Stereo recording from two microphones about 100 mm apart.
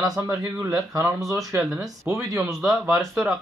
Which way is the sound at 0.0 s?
35° right (ahead or behind).